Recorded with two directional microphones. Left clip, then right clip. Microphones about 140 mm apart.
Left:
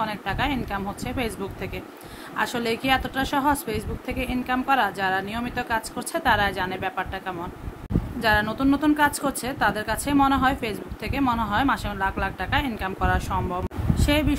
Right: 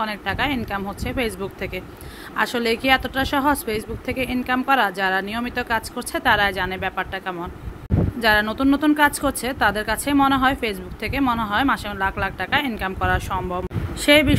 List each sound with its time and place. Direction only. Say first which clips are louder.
0.0 s a woman's voice: right 3 dB; 20° right (ahead or behind)
14.0 s speech: right 9 dB; 30° right (ahead or behind)